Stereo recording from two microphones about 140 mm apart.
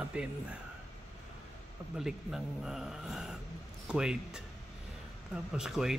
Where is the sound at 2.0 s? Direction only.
5° right (ahead or behind).